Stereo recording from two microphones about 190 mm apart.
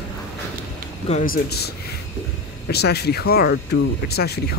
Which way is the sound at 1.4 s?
55° left (ahead or behind).